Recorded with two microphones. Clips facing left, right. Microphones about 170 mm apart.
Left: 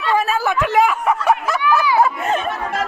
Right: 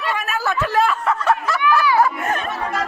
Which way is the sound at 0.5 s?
15° left (ahead or behind).